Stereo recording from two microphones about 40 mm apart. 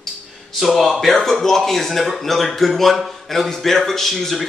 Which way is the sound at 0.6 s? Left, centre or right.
Centre.